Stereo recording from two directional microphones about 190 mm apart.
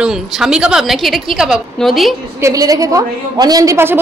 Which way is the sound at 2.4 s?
15° right (ahead or behind).